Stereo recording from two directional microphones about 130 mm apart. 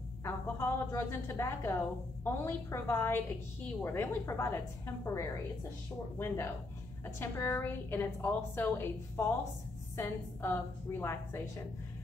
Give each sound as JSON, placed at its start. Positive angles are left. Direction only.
{"t": 0.2, "sound": "a woman's voice", "side_deg": 20}